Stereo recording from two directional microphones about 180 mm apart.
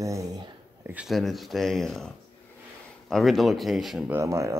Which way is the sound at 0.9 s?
5° right (ahead or behind).